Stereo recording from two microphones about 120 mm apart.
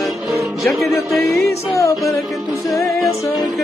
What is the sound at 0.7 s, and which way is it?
Speech, centre (ahead or behind).